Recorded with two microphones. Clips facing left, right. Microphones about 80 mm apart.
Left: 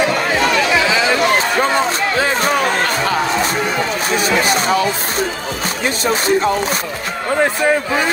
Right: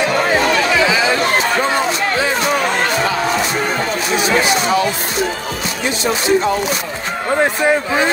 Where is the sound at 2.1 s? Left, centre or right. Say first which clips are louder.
Left 2 dB; left.